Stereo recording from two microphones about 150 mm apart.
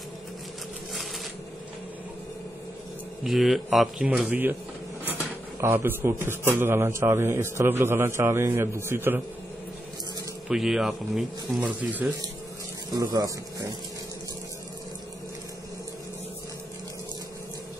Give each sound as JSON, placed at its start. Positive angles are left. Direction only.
{"t": 3.3, "sound": "speech", "side_deg": 0}
{"t": 10.5, "sound": "speech", "side_deg": -5}
{"t": 12.9, "sound": "a man's voice", "side_deg": -25}